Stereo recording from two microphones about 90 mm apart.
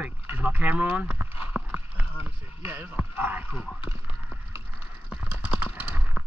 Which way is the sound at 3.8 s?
90° left.